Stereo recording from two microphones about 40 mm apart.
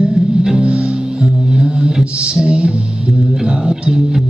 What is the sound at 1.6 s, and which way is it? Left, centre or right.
Music, centre.